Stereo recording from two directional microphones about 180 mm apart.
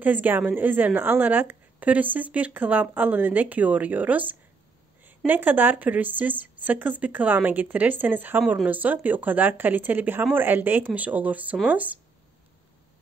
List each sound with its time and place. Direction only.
0.0 s a woman's voice: 10° right (ahead or behind)